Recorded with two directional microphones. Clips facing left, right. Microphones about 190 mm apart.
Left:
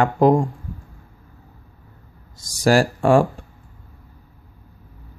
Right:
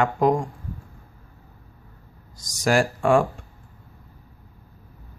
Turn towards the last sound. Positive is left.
turn(degrees=35)  # may be behind; listen again after turning